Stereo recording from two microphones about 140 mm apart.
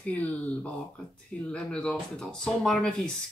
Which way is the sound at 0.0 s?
10° left (ahead or behind).